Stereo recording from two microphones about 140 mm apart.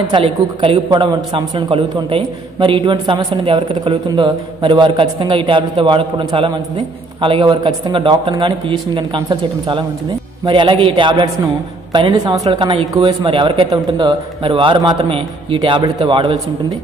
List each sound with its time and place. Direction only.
0.1 s a woman's voice: 40° right (ahead or behind)